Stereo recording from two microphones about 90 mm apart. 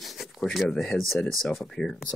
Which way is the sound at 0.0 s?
Centre (ahead or behind).